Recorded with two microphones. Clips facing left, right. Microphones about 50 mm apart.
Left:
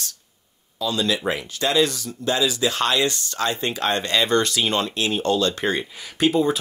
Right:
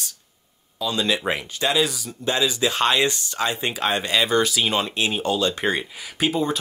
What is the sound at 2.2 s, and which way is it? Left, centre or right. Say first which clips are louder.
Speech: even; right.